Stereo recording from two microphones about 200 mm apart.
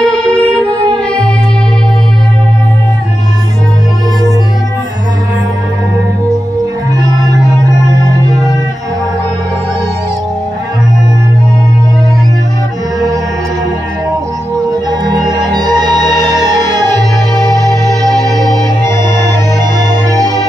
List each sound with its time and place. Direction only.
0.0 s music: 5° left (ahead or behind)
14.9 s music: 20° right (ahead or behind)
19.9 s music: 20° right (ahead or behind)